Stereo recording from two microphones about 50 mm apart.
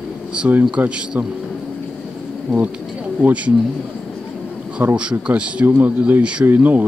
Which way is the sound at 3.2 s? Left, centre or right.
Right.